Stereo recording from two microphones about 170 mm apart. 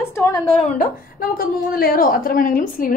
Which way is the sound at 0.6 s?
45° left (ahead or behind).